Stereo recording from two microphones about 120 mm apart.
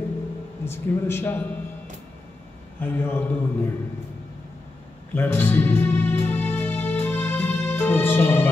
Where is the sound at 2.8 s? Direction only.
15° left (ahead or behind).